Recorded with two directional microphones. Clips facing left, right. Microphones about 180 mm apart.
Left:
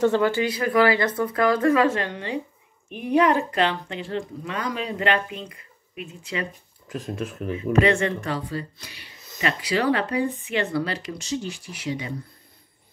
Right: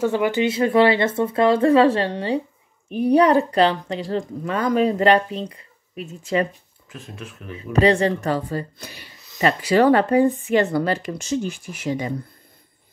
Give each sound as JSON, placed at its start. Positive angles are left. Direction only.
{"t": 0.0, "sound": "speech", "side_deg": -15}
{"t": 6.9, "sound": "speech", "side_deg": 40}
{"t": 7.5, "sound": "speech", "side_deg": -35}